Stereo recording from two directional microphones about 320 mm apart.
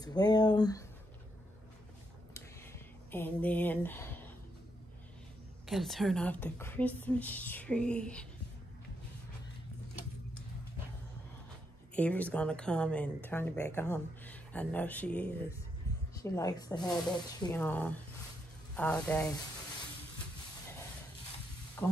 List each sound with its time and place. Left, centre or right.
0.0 s speech: centre
2.3 s a sound: centre
5.7 s speech: centre
11.9 s speech: centre
21.8 s speech: centre